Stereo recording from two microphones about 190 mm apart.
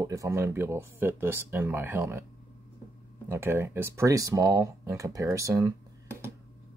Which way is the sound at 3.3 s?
10° right (ahead or behind).